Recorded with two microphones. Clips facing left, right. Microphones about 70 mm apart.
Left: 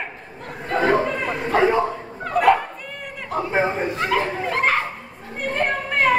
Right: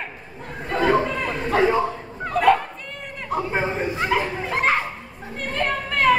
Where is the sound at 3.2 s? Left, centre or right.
Centre.